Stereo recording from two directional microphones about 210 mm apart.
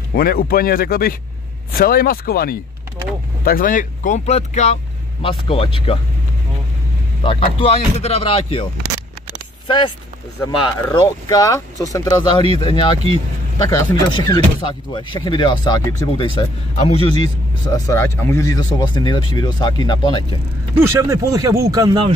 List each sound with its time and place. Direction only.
0.1 s speech: 45° left (ahead or behind); by 5.9 s 25° left (ahead or behind)
7.2 s speech: 25° left (ahead or behind)
9.7 s speech: 25° left (ahead or behind)
20.8 s speech: 15° right (ahead or behind)